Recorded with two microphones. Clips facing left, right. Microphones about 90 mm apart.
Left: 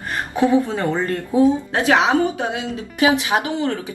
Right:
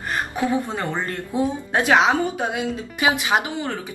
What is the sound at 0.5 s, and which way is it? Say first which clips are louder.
A woman's voice: left 6 dB; 25° right (ahead or behind).